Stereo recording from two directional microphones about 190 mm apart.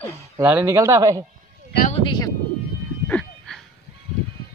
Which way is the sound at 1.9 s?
25° left (ahead or behind).